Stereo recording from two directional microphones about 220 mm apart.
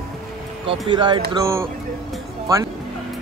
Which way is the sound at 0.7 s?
20° right (ahead or behind).